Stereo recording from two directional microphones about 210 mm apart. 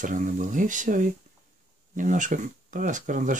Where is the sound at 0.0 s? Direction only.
40° right (ahead or behind).